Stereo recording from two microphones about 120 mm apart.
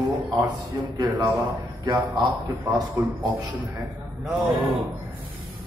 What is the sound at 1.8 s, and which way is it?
A man's voice, 30° right (ahead or behind).